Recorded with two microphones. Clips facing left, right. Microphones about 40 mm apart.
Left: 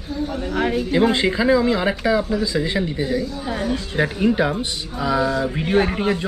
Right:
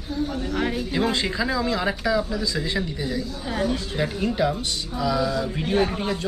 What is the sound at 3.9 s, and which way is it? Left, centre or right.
Speech, centre.